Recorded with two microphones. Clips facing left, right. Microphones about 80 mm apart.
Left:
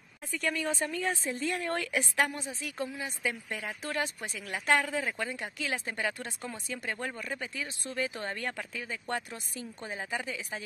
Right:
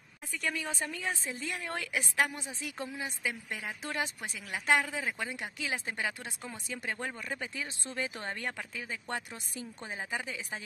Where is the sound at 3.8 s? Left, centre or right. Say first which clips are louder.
Left 2 dB; right.